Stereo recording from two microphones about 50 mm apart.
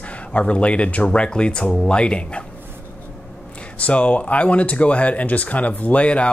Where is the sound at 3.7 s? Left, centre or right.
Left.